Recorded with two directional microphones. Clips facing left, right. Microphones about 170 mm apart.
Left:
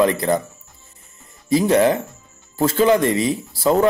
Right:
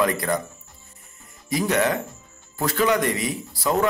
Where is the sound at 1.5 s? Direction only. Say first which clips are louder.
Left 7 dB; 30° left (ahead or behind).